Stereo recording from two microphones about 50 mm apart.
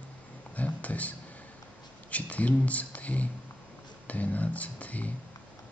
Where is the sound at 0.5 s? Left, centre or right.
Left.